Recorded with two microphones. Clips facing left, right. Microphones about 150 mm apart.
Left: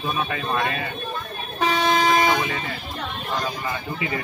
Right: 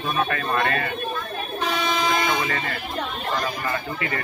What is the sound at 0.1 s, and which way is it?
Speech, 15° left (ahead or behind).